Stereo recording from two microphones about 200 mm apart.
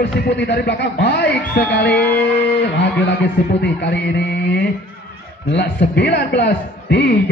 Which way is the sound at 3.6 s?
60° left (ahead or behind).